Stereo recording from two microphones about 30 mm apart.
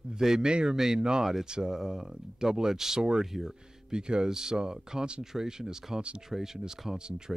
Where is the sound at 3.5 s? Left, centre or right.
Right.